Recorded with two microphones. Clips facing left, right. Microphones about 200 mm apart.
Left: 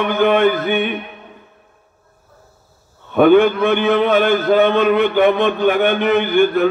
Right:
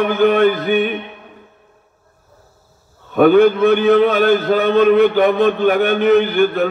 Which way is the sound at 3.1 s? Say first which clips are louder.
Right 1 dB; 40° right (ahead or behind).